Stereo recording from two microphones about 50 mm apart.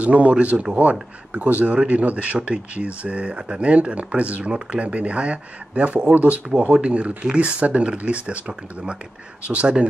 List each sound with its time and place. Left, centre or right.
0.0 s speech: right